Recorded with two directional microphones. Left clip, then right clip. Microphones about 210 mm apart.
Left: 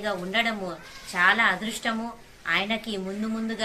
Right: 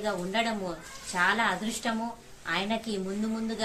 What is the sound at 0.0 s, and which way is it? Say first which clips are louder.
A woman's voice: left 3 dB; centre (ahead or behind).